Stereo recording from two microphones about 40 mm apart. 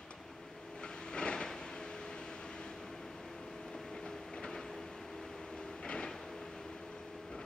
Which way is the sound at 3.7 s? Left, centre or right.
Centre.